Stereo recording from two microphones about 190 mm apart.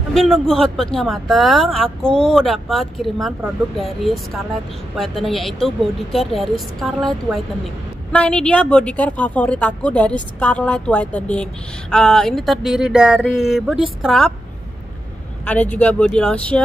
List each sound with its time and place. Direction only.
0.1 s speech: centre (ahead or behind)
8.1 s a woman's voice: 5° left (ahead or behind)
15.4 s a woman's voice: 10° left (ahead or behind)